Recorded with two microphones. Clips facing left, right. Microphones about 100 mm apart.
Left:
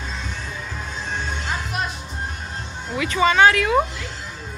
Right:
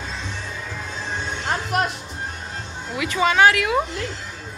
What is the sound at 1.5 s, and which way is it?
Music, 65° right (ahead or behind).